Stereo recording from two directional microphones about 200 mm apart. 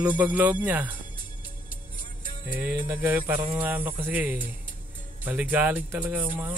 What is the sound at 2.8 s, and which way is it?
Speech, 10° right (ahead or behind).